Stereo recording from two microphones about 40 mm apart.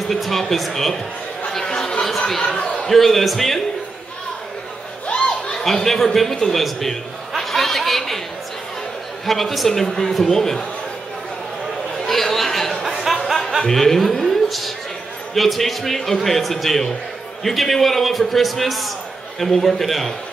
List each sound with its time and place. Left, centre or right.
0.1 s a man's voice: centre
1.5 s chatter: centre
2.0 s chatter: centre
2.5 s a sound: centre
2.9 s a man's voice: centre
5.0 s crowd: left
5.6 s a man's voice: centre
6.6 s chuckle: centre
9.2 s a man's voice: centre
12.0 s chatter: centre
12.8 s a sound: centre
13.2 s music: centre
13.6 s a man's voice: centre